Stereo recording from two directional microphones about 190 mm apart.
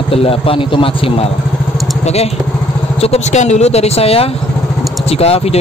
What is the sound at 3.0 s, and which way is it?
Speech, 35° left (ahead or behind).